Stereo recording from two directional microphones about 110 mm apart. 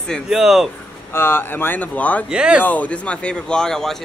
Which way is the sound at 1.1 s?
20° left (ahead or behind).